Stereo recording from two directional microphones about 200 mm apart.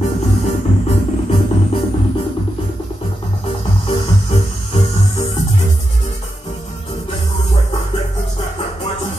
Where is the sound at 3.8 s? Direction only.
30° left (ahead or behind).